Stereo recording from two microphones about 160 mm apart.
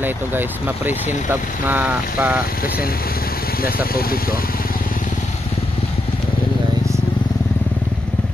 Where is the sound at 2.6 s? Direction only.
65° left (ahead or behind).